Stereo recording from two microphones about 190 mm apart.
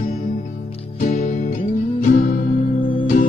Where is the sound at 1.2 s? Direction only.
45° left (ahead or behind).